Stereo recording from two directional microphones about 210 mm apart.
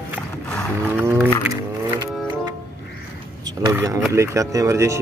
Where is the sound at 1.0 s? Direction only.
10° right (ahead or behind).